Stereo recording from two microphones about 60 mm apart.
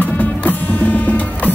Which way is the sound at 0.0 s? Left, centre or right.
Left.